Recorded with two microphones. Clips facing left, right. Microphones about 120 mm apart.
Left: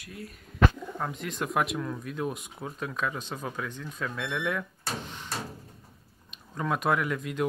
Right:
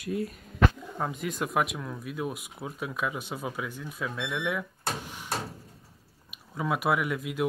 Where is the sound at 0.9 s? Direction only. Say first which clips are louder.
Right 2 dB; 5° right (ahead or behind).